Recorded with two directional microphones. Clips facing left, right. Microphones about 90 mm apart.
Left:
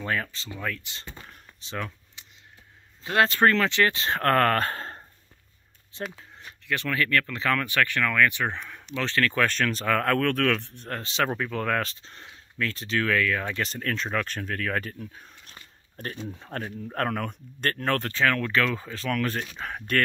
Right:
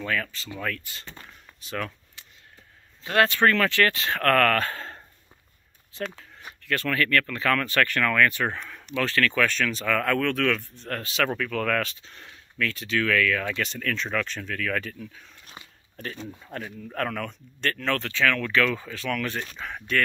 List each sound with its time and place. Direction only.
0.0 s speech: 30° left (ahead or behind)
0.6 s speech: 15° left (ahead or behind)
1.6 s a sound: 20° left (ahead or behind)
3.0 s speech: 25° left (ahead or behind)
6.6 s speech: 15° left (ahead or behind)
8.9 s speech: 25° left (ahead or behind)
9.5 s speech: 40° left (ahead or behind)
10.6 s speech: 65° left (ahead or behind)
10.9 s speech: 30° left (ahead or behind)
15.4 s dog: 5° right (ahead or behind)
16.3 s speech: 40° left (ahead or behind)